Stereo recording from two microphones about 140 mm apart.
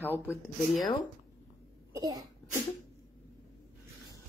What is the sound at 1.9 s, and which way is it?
Cough, 25° right (ahead or behind).